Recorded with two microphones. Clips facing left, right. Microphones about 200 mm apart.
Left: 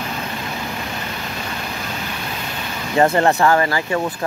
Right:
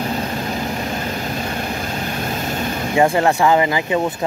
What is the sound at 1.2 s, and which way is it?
Vehicle, 40° right (ahead or behind).